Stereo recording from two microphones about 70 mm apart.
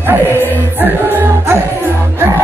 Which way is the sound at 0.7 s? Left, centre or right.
Right.